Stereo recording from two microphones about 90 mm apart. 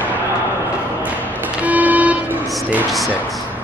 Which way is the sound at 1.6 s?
15° right (ahead or behind).